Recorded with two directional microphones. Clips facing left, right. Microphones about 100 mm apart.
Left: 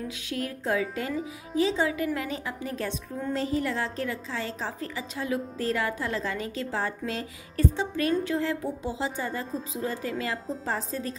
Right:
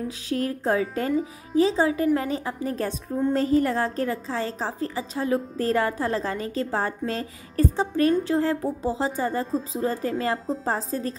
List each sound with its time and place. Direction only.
0.3 s a woman's voice: 40° right (ahead or behind)